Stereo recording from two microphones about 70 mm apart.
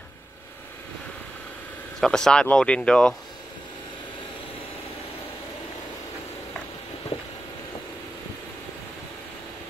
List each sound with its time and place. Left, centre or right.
2.0 s speech: centre